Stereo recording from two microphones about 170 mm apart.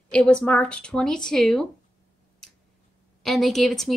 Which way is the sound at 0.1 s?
5° left (ahead or behind).